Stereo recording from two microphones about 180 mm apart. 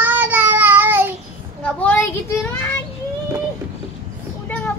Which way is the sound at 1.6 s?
10° left (ahead or behind).